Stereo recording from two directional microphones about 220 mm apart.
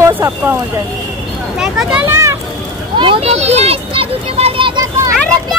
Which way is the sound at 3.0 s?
25° right (ahead or behind).